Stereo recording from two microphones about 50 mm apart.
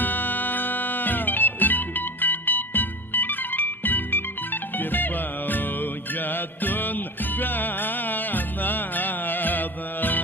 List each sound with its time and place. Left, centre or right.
0.0 s music: left